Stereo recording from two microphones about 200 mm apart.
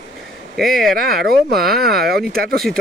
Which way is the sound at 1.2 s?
50° right (ahead or behind).